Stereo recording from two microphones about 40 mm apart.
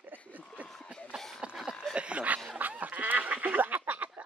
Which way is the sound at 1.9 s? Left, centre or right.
Right.